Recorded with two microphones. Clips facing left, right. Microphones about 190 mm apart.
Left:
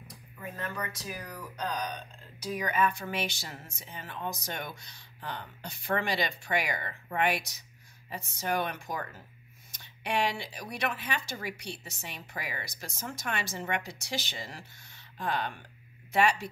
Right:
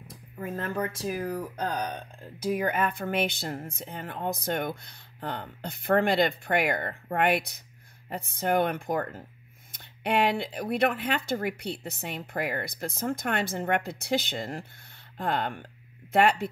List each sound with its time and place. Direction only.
0.1 s speech: 50° right (ahead or behind)